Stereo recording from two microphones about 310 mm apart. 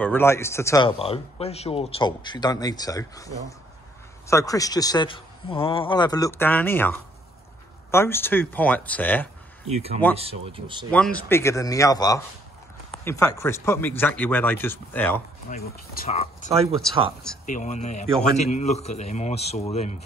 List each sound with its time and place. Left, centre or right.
0.0 s speech: centre
9.7 s speech: centre
10.9 s speech: centre
15.5 s speech: left
17.5 s speech: left